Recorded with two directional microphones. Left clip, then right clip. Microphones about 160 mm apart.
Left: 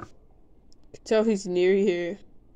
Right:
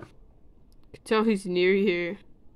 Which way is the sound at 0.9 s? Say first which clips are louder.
Left 2 dB; 35° right (ahead or behind).